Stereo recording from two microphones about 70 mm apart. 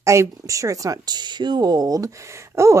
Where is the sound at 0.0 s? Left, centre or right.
Right.